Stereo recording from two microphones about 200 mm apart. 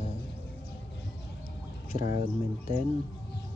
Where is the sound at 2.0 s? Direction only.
30° right (ahead or behind).